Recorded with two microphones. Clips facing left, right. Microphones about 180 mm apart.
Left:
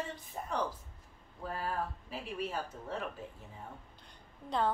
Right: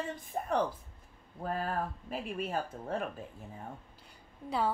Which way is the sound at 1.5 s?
50° right (ahead or behind).